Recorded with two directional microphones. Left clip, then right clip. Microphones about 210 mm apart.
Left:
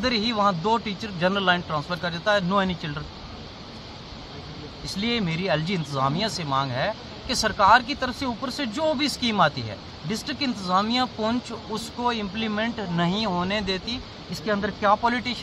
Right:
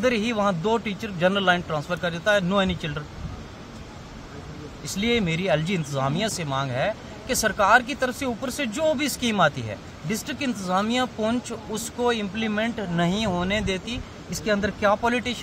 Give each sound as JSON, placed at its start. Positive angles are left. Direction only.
{"t": 0.0, "sound": "speech", "side_deg": -20}
{"t": 5.0, "sound": "speech", "side_deg": -20}